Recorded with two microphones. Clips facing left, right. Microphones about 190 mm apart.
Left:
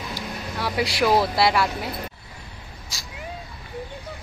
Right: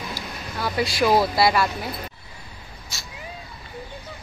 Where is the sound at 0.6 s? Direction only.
5° left (ahead or behind).